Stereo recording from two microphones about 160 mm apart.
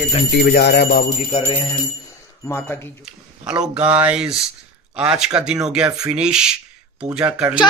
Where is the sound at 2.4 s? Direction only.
15° left (ahead or behind).